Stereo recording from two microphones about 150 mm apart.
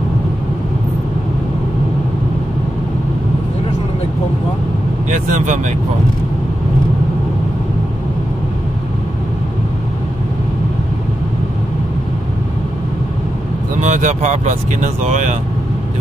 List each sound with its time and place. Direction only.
5.1 s speech: 55° right (ahead or behind)
13.7 s speech: 55° right (ahead or behind)